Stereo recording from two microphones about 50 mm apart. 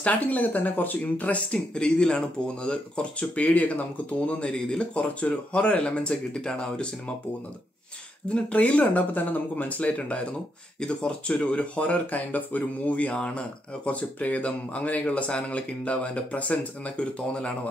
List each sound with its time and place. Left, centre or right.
0.0 s speech: left
8.5 s speech: left